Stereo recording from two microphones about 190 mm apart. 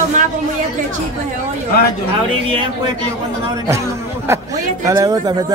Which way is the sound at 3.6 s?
15° right (ahead or behind).